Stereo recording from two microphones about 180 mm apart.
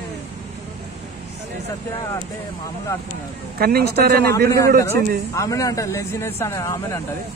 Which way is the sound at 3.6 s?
55° right (ahead or behind).